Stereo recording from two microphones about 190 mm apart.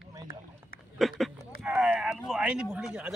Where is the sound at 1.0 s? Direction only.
Centre (ahead or behind).